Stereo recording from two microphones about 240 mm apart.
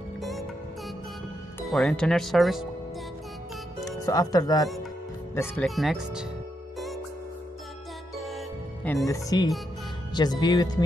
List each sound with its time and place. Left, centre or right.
0.2 s music: centre
1.6 s speech: centre
4.0 s speech: centre
8.8 s speech: centre